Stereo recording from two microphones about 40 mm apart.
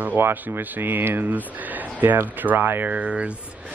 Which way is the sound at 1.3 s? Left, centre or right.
Right.